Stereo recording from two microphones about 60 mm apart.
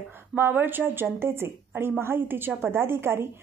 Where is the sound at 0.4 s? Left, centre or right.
Right.